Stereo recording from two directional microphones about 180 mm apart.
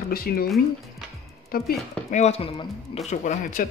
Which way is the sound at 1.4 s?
55° left (ahead or behind).